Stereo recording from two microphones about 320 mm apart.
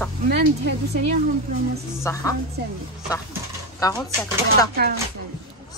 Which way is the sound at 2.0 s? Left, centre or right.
Centre.